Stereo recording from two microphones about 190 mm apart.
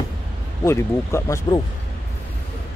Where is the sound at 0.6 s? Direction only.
15° left (ahead or behind).